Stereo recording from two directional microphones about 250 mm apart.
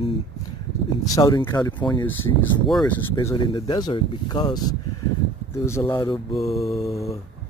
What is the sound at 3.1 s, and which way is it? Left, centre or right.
Speech, centre.